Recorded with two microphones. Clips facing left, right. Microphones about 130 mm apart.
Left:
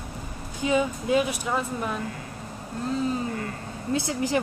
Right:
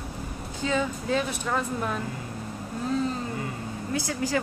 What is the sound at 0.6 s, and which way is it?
Speech, 15° left (ahead or behind).